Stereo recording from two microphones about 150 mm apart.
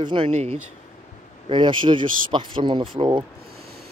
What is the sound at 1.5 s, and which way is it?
Speech, 35° right (ahead or behind).